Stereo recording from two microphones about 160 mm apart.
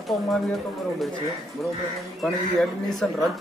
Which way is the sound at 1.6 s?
Centre (ahead or behind).